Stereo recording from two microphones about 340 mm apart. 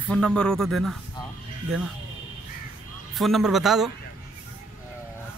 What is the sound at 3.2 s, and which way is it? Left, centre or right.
Speech, centre.